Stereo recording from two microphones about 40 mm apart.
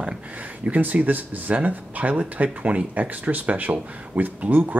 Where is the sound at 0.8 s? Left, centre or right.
Right.